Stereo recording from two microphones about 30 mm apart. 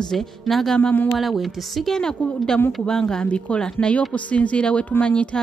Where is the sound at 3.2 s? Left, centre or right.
Left.